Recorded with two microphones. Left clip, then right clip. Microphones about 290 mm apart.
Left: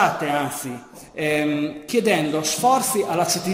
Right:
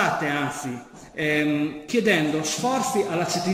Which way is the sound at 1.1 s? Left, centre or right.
Centre.